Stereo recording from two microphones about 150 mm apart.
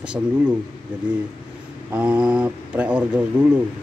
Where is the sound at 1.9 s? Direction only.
10° right (ahead or behind).